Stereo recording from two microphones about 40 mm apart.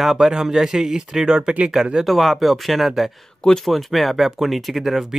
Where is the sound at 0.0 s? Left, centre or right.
Centre.